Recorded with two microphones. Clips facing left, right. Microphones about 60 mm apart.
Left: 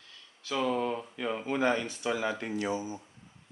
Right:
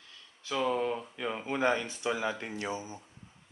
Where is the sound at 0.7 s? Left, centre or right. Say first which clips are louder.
Right 1 dB; centre.